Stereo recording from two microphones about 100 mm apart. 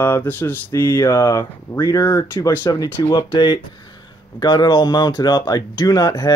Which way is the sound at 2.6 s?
45° left (ahead or behind).